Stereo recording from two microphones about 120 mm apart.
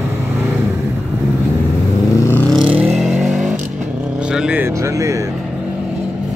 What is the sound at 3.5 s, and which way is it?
Vehicle, 75° right (ahead or behind).